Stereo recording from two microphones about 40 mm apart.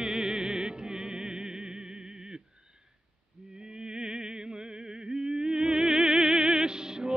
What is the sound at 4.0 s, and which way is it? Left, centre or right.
Music, centre.